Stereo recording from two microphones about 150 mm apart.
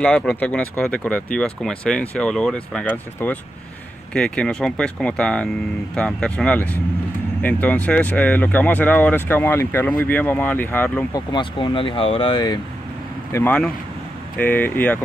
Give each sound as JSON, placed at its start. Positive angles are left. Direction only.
{"t": 0.0, "sound": "speech", "side_deg": 5}
{"t": 11.1, "sound": "speech", "side_deg": 30}
{"t": 13.3, "sound": "speech", "side_deg": 10}